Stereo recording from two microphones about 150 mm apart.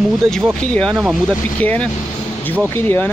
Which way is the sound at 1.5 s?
10° left (ahead or behind).